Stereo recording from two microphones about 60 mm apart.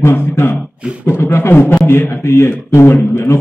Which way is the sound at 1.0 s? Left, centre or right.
Left.